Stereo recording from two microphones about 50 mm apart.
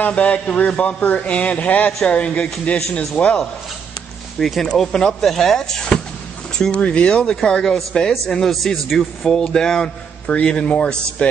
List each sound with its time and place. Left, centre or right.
0.0 s a man's voice: left
4.4 s a man's voice: centre
6.8 s a man's voice: left